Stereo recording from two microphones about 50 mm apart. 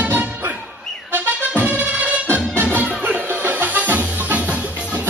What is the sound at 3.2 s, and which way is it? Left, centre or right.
Music, right.